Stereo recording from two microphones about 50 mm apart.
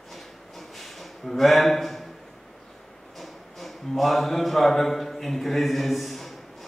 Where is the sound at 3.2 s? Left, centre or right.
Centre.